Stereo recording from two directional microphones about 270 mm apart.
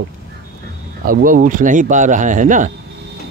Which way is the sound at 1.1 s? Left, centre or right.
Right.